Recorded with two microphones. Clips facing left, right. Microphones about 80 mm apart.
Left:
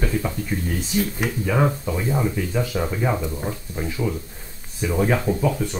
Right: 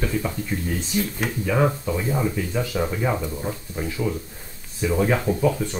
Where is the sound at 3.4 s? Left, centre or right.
Centre.